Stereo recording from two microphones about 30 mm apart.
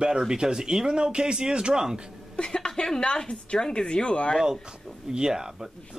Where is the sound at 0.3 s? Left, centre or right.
Right.